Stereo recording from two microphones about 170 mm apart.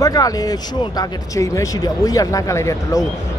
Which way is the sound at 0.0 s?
20° left (ahead or behind).